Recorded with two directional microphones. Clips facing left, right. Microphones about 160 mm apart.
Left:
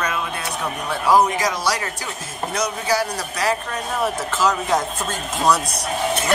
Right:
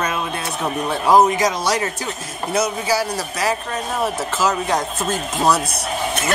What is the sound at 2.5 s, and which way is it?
A man's voice, 5° right (ahead or behind).